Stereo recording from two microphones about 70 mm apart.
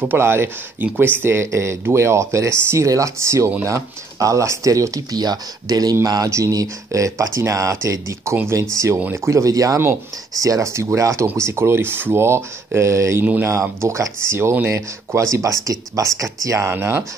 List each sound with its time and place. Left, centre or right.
0.0 s speech: right
5.2 s speech: right
6.3 s speech: right
13.2 s speech: right
13.5 s speech: right
15.3 s speech: right
16.7 s speech: right